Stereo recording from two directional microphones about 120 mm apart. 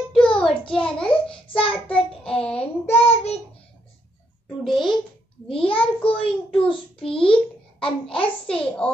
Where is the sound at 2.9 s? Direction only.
55° left (ahead or behind).